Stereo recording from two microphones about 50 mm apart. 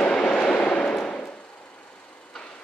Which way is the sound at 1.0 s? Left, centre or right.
Centre.